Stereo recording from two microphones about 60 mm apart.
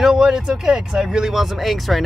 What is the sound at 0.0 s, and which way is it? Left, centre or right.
Speech, centre.